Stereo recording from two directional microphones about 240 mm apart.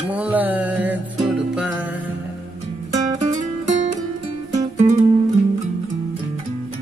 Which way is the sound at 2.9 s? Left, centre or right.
Centre.